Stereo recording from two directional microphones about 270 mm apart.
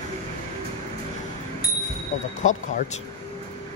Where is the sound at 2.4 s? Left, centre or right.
Left.